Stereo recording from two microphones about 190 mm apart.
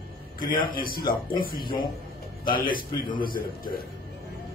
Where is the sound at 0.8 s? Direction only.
25° left (ahead or behind).